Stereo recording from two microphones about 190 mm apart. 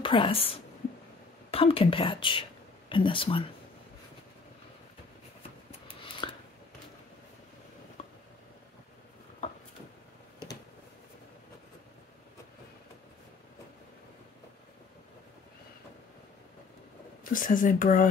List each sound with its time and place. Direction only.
0.0 s a woman's voice: 25° left (ahead or behind)
5.7 s scissors: 30° left (ahead or behind)
17.2 s speech: 45° left (ahead or behind)